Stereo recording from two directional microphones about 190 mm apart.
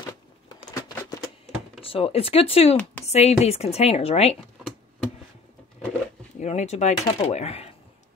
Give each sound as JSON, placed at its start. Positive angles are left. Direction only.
{"t": 0.7, "sound": "a sound", "side_deg": 20}
{"t": 1.8, "sound": "speech", "side_deg": 30}
{"t": 2.8, "sound": "speech", "side_deg": 10}
{"t": 3.1, "sound": "speech", "side_deg": 35}
{"t": 6.4, "sound": "speech", "side_deg": 35}